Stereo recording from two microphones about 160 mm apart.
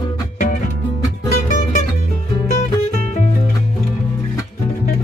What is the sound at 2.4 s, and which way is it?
Music, 45° left (ahead or behind).